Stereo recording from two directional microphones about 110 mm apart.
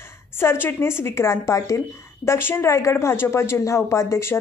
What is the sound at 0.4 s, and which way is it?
A woman's voice, 20° left (ahead or behind).